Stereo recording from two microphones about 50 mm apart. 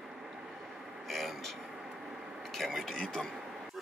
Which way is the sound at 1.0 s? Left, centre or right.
Centre.